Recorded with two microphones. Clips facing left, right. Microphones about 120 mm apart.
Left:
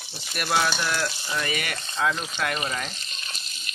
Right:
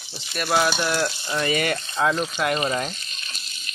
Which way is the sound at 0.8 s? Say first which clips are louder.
Right 4 dB; 30° right (ahead or behind).